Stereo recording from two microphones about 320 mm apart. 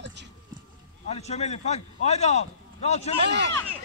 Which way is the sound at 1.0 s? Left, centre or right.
Centre.